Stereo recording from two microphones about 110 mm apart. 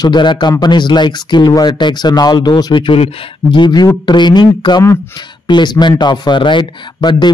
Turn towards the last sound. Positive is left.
turn(degrees=45)  # may be behind; listen again after turning